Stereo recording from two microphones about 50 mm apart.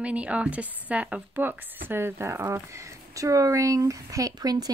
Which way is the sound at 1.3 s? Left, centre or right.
Right.